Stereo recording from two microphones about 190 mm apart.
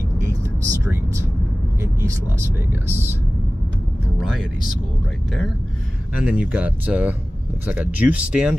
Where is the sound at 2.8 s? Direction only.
10° right (ahead or behind).